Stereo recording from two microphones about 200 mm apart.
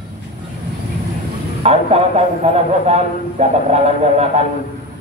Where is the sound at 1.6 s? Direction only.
30° right (ahead or behind).